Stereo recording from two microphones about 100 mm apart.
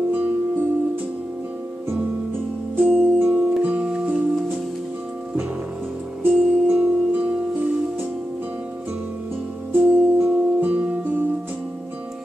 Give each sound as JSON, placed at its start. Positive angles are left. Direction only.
{"t": 0.1, "sound": "music", "side_deg": -15}
{"t": 2.7, "sound": "music", "side_deg": -15}
{"t": 6.2, "sound": "music", "side_deg": -15}
{"t": 9.7, "sound": "music", "side_deg": -15}